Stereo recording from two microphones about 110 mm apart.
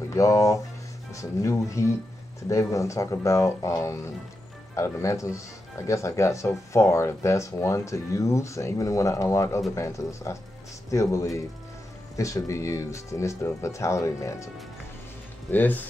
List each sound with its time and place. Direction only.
0.1 s speech: 30° left (ahead or behind)
15.5 s speech: 15° left (ahead or behind)